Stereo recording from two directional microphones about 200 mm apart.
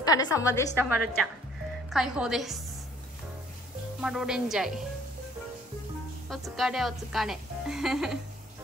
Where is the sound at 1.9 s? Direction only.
Centre (ahead or behind).